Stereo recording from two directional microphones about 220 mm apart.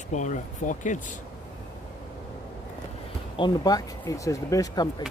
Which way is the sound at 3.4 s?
15° left (ahead or behind).